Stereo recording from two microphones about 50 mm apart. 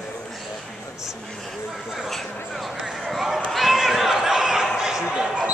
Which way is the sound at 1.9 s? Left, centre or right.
Centre.